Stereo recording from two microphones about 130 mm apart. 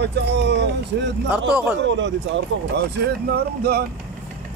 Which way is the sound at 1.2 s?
5° right (ahead or behind).